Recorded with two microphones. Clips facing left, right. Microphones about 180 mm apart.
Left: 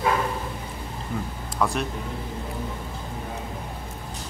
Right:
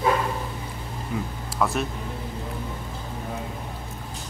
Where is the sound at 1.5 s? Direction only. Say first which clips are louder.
Even; centre (ahead or behind).